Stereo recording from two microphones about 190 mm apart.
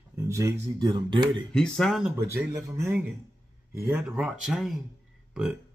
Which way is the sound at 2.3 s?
15° right (ahead or behind).